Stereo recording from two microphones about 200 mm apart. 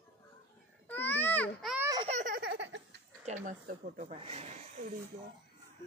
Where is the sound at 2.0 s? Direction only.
40° right (ahead or behind); by 3.0 s 60° right (ahead or behind).